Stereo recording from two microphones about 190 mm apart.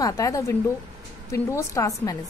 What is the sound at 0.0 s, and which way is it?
A woman's voice, 15° left (ahead or behind).